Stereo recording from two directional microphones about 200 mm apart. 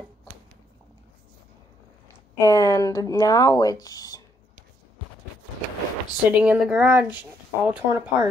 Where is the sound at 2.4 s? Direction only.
15° left (ahead or behind).